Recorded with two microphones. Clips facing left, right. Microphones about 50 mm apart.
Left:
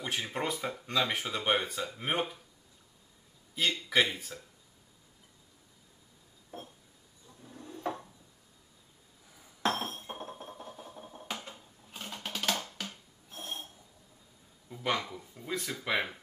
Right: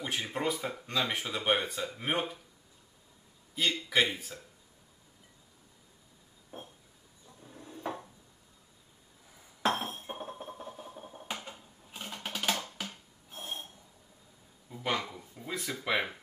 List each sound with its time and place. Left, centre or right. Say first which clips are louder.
0.0 s speech: right 1 dB; centre
3.5 s speech: even; centre
7.4 s dishes: left 2 dB; centre
9.8 s music: even; centre
12.7 s a sound: right 1 dB; centre
14.7 s speech: left 1 dB; centre